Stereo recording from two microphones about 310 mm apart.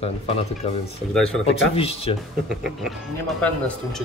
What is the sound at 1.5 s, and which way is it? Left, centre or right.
Speech, centre.